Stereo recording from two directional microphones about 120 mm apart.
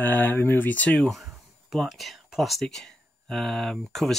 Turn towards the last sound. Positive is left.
turn(degrees=5)  # may be behind; listen again after turning